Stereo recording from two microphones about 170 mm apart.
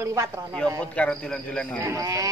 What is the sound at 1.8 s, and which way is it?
Speech, 20° right (ahead or behind).